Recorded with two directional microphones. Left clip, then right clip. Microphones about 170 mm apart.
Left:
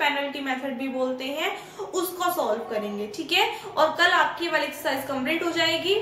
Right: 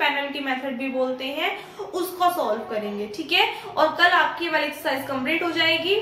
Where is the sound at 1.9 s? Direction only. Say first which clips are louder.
Right 3 dB; centre (ahead or behind).